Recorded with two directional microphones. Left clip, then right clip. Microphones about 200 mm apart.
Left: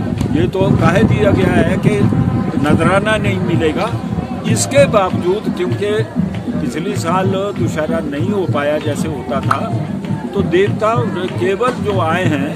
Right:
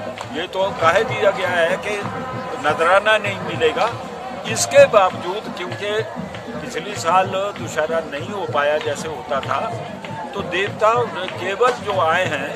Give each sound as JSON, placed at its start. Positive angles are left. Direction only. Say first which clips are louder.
{"t": 0.4, "sound": "speech", "louder": "left 3 dB", "side_deg": 0}
{"t": 7.1, "sound": "speech", "louder": "even", "side_deg": 0}
{"t": 10.3, "sound": "speech", "louder": "left 8 dB", "side_deg": 0}